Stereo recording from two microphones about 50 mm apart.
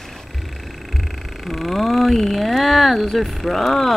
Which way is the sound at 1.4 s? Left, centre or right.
Centre.